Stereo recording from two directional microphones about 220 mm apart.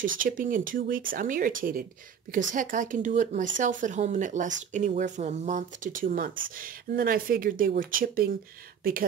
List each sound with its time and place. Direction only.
0.0 s speech: 40° right (ahead or behind)